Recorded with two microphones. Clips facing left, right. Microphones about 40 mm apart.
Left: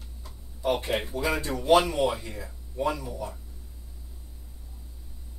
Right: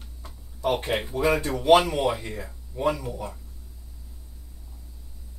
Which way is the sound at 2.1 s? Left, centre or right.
Right.